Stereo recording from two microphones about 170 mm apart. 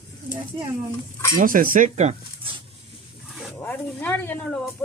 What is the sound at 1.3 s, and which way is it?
Speech, 55° right (ahead or behind).